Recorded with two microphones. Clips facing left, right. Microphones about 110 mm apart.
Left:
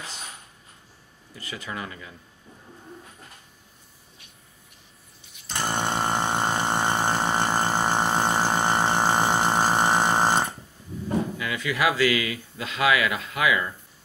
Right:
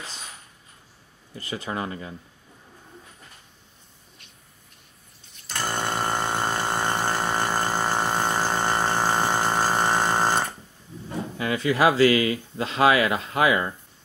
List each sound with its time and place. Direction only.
1.3 s speech: 35° right (ahead or behind)
5.5 s a sound: 15° left (ahead or behind)
11.3 s speech: 35° right (ahead or behind)